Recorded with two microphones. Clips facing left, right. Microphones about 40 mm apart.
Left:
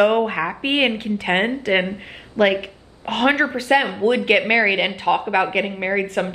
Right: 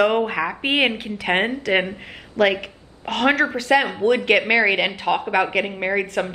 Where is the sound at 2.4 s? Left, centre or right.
Centre.